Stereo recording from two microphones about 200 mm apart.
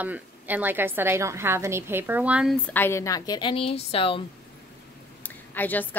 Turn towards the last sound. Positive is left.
turn(degrees=10)  # may be behind; listen again after turning